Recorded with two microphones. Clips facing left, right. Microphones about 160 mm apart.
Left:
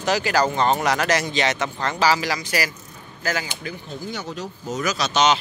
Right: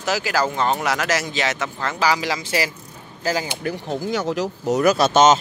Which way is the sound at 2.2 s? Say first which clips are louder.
Right 2 dB; 25° right (ahead or behind).